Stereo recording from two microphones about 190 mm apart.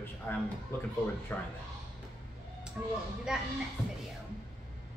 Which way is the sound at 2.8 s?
5° right (ahead or behind).